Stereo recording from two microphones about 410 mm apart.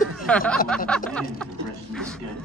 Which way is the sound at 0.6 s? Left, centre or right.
Centre.